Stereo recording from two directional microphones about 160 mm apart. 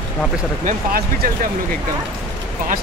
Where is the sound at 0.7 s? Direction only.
60° right (ahead or behind).